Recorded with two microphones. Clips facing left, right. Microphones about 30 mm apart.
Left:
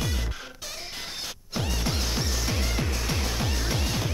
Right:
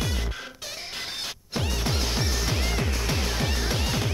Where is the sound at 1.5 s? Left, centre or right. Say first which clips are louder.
Right 1 dB; centre.